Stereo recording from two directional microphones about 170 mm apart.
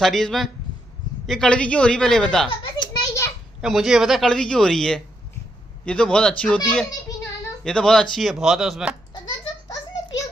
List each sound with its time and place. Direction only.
0.0 s speech: centre (ahead or behind)
2.6 s children playing: 25° left (ahead or behind)
3.6 s speech: centre (ahead or behind)